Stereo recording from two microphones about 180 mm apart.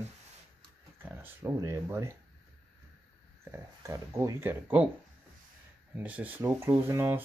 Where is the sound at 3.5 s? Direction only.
15° right (ahead or behind).